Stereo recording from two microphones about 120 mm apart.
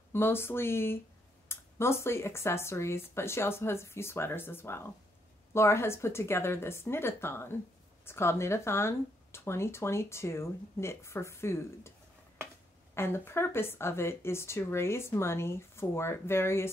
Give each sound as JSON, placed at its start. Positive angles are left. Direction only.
{"t": 0.1, "sound": "speech", "side_deg": 20}
{"t": 12.9, "sound": "speech", "side_deg": 20}